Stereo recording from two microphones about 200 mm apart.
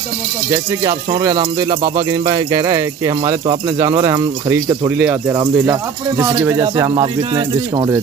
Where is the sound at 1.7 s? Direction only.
35° right (ahead or behind).